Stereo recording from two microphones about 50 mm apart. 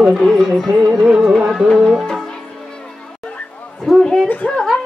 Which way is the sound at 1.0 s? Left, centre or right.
Centre.